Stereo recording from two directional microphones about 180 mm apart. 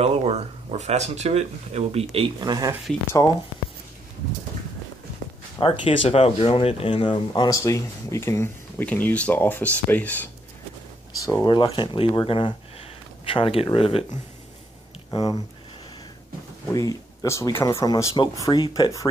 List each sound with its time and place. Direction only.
0.0 s speech: 35° right (ahead or behind)
5.6 s speech: 30° left (ahead or behind); by 10.3 s 10° left (ahead or behind)
11.4 s speech: 25° left (ahead or behind)
15.0 s speech: 20° left (ahead or behind)
16.7 s speech: 20° left (ahead or behind)